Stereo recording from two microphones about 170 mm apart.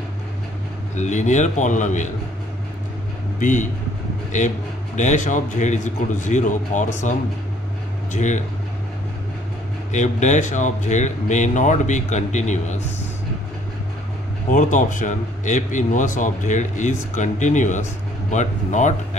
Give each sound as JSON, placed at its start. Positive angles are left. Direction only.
{"t": 0.9, "sound": "speech", "side_deg": 45}
{"t": 3.3, "sound": "speech", "side_deg": 45}
{"t": 4.9, "sound": "speech", "side_deg": 45}
{"t": 9.9, "sound": "speech", "side_deg": 45}
{"t": 14.5, "sound": "speech", "side_deg": 50}